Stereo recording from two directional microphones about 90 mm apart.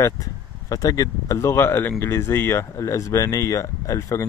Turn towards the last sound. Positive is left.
turn(degrees=35)  # may be behind; listen again after turning